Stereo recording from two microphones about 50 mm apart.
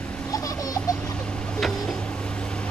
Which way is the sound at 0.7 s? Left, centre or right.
Left.